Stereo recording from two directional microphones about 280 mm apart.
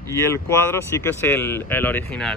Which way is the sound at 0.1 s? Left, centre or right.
Centre.